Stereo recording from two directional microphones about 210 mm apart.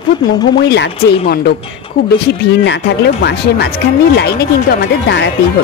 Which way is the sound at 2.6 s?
55° left (ahead or behind).